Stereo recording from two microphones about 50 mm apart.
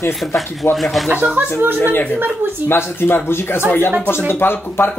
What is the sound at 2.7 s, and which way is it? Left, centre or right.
A woman's voice, left.